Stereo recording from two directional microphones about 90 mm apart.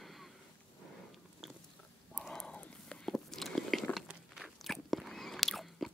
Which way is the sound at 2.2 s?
5° left (ahead or behind).